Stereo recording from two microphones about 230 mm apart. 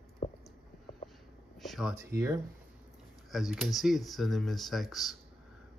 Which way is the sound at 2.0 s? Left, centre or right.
Centre.